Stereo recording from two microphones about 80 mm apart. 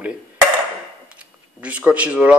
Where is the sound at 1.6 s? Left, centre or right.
Centre.